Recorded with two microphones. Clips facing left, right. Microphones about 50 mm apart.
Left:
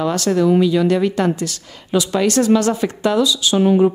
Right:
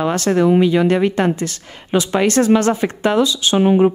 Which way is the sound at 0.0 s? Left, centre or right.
Right.